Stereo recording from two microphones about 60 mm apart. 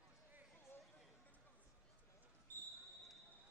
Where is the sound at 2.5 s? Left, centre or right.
Left.